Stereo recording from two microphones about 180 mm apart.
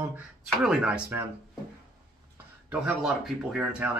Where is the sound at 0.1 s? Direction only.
5° right (ahead or behind).